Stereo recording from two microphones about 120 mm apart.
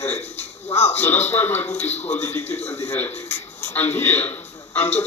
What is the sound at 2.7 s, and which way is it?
Television, 20° left (ahead or behind).